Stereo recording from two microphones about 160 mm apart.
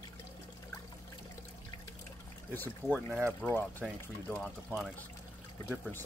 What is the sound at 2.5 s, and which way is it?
Speech, 10° left (ahead or behind).